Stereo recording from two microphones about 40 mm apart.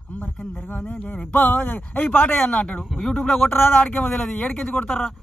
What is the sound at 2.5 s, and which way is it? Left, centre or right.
Speech, left.